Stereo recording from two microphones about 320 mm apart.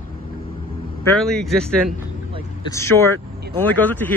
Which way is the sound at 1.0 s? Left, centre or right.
Centre.